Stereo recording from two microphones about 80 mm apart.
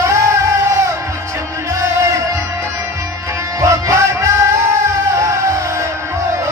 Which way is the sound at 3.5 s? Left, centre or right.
Right.